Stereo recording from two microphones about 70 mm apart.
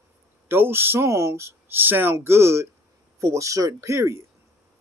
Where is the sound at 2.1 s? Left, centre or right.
Right.